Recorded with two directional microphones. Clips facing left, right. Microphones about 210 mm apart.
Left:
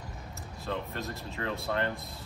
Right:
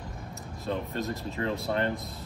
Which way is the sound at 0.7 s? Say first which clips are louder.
Right 4 dB; 15° right (ahead or behind).